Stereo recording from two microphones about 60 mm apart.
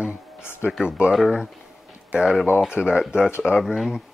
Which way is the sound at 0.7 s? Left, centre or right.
Centre.